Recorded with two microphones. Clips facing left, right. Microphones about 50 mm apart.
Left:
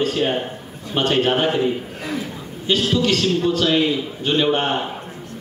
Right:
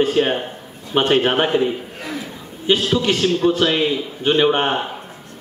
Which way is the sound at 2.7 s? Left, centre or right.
Right.